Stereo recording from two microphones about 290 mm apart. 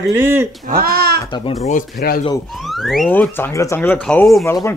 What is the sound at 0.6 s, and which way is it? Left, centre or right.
Speech, right.